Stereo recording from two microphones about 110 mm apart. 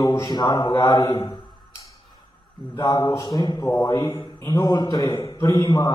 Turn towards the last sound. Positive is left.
turn(degrees=35)  # may be behind; listen again after turning